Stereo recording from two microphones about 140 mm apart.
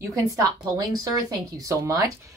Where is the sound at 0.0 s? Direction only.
20° right (ahead or behind).